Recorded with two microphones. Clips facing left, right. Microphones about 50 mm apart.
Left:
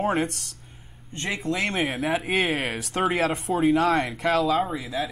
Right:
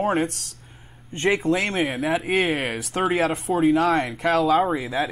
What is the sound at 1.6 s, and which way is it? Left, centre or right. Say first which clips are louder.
Speech: right 2 dB; centre.